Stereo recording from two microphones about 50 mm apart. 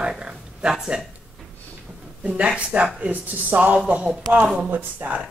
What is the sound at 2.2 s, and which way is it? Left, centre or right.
Speech, right.